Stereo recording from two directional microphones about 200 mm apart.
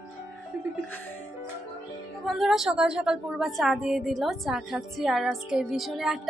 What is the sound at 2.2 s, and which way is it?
A woman's voice, centre (ahead or behind).